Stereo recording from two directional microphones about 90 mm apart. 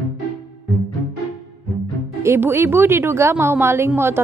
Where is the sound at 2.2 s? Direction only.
30° right (ahead or behind).